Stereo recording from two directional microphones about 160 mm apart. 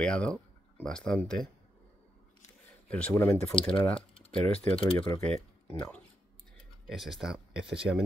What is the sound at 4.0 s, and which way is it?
Typing, 35° left (ahead or behind).